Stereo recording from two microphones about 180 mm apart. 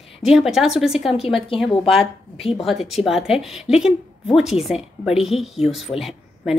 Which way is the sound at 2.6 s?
Centre (ahead or behind).